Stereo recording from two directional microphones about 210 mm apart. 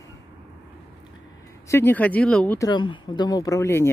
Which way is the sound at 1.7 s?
10° left (ahead or behind).